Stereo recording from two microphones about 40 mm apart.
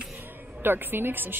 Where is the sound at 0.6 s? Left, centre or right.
Right.